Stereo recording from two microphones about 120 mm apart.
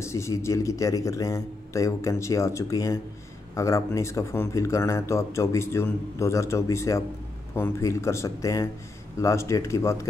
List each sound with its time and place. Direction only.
0.0 s speech: 25° left (ahead or behind)